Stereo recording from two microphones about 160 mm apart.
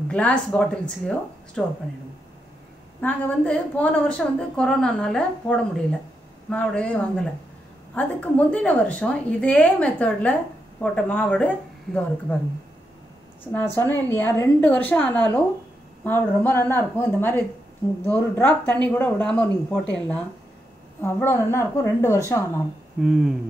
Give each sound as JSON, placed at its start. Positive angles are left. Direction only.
{"t": 0.1, "sound": "speech", "side_deg": 5}
{"t": 3.0, "sound": "a woman's voice", "side_deg": 10}
{"t": 13.4, "sound": "a woman's voice", "side_deg": 10}
{"t": 21.0, "sound": "a woman's voice", "side_deg": 15}
{"t": 23.0, "sound": "speech", "side_deg": 0}